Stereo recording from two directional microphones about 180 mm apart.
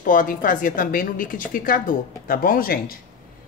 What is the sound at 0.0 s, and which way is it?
A woman's voice, 50° left (ahead or behind).